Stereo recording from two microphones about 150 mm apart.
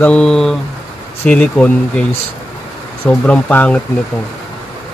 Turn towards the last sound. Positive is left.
turn(degrees=10)  # may be behind; listen again after turning